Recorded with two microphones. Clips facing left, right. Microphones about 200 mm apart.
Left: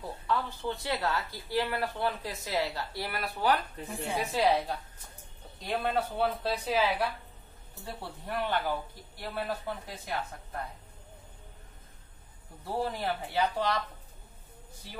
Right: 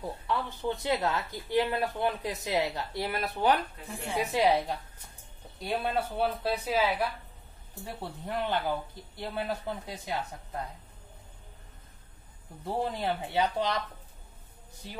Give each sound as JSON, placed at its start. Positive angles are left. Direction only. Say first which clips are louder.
{"t": 0.3, "sound": "speech", "louder": "even", "side_deg": -20}
{"t": 5.9, "sound": "speech", "louder": "left 1 dB", "side_deg": -5}
{"t": 7.8, "sound": "speech", "louder": "right 2 dB", "side_deg": -20}
{"t": 12.6, "sound": "speech", "louder": "right 1 dB", "side_deg": -20}